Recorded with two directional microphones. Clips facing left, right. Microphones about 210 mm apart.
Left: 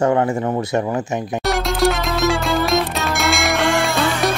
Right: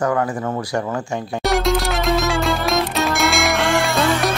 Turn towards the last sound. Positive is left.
turn(degrees=0)  # may be behind; listen again after turning